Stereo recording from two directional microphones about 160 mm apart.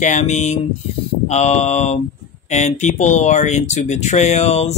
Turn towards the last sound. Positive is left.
turn(degrees=40)  # may be behind; listen again after turning